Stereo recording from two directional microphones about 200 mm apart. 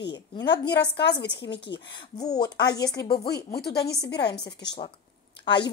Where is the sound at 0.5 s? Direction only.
55° left (ahead or behind).